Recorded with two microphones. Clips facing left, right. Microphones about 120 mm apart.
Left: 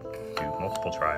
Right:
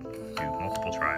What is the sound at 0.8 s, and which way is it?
Speech, 20° left (ahead or behind).